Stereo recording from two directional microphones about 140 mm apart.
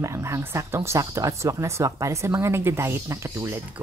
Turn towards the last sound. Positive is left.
turn(degrees=-20)  # may be behind; listen again after turning